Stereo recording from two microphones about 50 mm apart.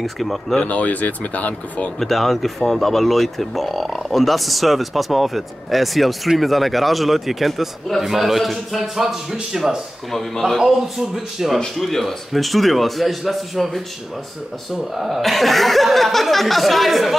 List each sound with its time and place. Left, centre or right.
0.0 s speech: centre
0.6 s speech: left
2.0 s speech: centre